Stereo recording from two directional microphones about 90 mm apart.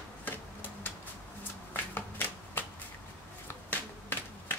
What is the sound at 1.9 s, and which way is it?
Shuffling cards, 20° left (ahead or behind).